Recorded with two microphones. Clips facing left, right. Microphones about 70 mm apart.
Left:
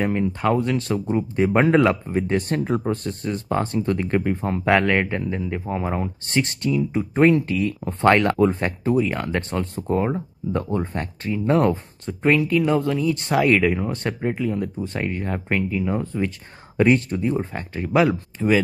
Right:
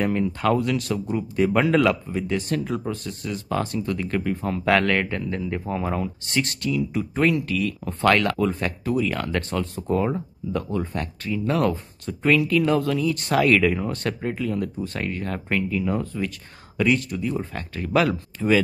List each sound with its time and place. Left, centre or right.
0.0 s speech: centre
4.6 s speech: centre